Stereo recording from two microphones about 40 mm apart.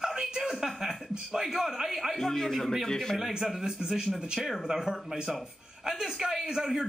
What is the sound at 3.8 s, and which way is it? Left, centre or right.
Speech, centre.